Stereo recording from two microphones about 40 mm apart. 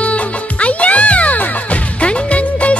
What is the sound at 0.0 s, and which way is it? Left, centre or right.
Music, left.